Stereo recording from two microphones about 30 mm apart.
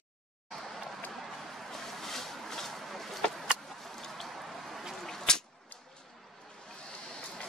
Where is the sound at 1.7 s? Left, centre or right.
Centre.